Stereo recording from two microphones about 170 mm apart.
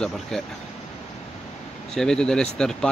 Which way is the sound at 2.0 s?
5° left (ahead or behind).